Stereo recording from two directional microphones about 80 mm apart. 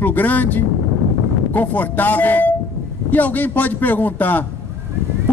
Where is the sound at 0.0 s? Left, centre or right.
Left.